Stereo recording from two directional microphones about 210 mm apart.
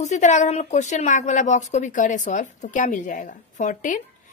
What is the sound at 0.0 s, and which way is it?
A woman's voice, 35° left (ahead or behind).